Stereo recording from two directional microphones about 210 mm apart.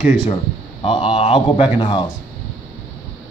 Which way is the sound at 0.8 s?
25° left (ahead or behind).